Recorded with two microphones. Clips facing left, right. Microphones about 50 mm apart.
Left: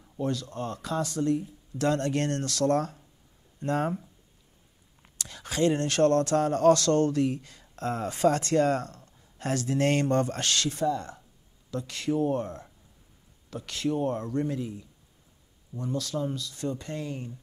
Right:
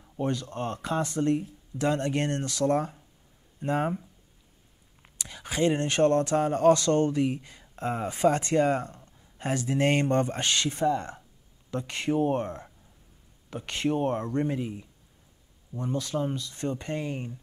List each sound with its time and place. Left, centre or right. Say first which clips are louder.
0.2 s speech: right 1 dB; right
1.8 s speech: even; centre
5.0 s speech: right 1 dB; centre